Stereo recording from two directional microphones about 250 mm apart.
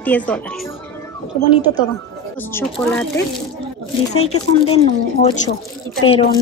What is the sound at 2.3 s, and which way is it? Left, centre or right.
Speech, centre.